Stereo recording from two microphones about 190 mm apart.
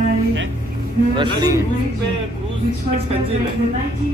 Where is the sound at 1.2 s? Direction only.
20° right (ahead or behind).